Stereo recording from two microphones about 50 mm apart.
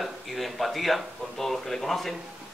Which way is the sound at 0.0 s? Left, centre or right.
Centre.